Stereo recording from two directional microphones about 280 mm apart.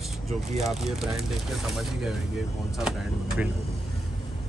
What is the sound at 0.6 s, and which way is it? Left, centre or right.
Speech, centre.